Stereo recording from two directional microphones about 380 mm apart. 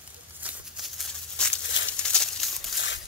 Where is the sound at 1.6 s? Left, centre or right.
Left.